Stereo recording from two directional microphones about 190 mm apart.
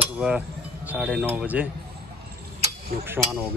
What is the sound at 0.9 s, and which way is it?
Speech, 5° right (ahead or behind).